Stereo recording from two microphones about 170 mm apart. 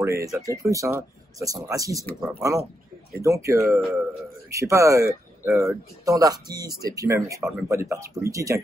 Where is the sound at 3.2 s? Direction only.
15° right (ahead or behind).